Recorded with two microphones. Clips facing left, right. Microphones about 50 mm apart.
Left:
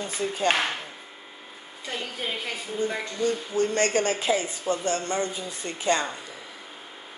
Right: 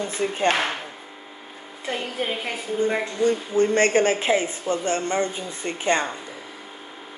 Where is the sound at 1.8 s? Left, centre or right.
Right.